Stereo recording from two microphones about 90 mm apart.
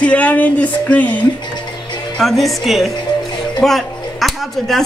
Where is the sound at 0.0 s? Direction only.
15° left (ahead or behind).